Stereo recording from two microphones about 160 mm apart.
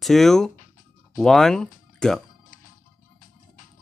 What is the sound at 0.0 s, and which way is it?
Speech, centre (ahead or behind).